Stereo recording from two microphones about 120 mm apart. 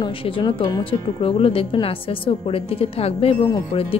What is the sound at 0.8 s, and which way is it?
A woman's voice, 50° left (ahead or behind).